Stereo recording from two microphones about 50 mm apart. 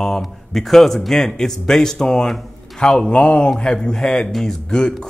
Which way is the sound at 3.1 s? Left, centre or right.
Left.